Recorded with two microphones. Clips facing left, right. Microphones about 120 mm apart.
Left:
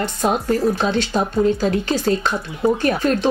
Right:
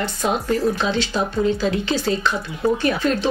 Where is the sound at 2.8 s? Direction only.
45° left (ahead or behind).